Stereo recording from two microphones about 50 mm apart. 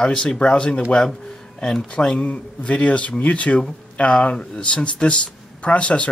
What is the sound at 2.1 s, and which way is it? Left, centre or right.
Speech, left.